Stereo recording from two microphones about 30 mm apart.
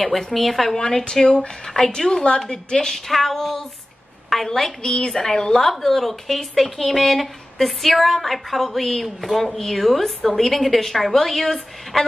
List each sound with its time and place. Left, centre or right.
0.1 s speech: centre
0.7 s a woman's voice: left
3.1 s a woman's voice: centre
5.7 s speech: centre
9.4 s a woman's voice: centre